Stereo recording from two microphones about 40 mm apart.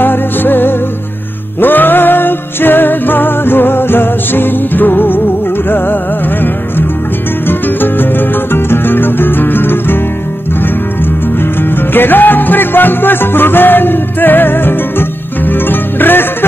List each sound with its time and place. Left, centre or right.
0.0 s music: left
7.4 s music: left
11.9 s music: left